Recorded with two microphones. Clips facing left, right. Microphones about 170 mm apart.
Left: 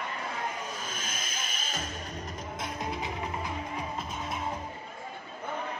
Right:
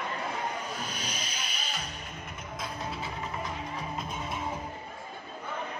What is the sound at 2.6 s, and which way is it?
Music, 15° left (ahead or behind).